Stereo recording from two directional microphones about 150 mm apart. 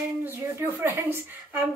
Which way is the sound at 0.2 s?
15° right (ahead or behind).